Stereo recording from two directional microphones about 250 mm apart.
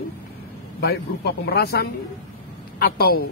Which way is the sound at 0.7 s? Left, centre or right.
Left.